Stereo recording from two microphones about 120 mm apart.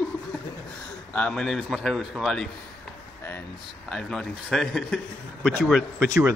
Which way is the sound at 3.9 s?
Centre (ahead or behind).